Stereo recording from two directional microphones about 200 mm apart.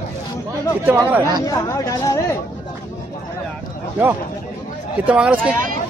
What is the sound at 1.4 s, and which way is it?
Speech, 15° left (ahead or behind).